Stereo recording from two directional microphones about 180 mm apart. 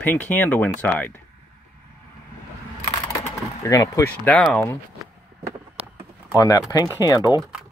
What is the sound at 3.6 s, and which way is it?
Speech, 20° left (ahead or behind).